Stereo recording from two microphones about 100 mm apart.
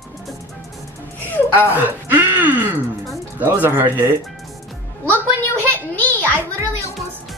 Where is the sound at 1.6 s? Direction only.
20° right (ahead or behind).